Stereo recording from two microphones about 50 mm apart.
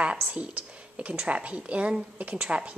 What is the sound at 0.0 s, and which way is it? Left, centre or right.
A woman's voice, right.